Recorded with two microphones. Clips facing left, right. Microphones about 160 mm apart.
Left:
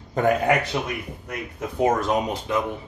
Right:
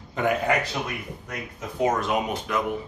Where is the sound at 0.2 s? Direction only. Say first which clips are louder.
Left 4 dB; 40° left (ahead or behind).